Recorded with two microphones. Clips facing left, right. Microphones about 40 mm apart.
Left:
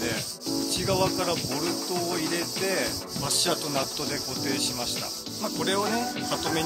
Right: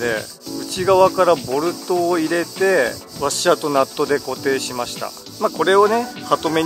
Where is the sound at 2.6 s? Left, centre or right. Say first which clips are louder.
Right 14 dB; right.